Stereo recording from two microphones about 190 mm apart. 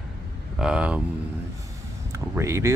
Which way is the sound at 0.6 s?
5° right (ahead or behind).